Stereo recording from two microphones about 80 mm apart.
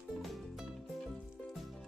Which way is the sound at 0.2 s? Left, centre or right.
Centre.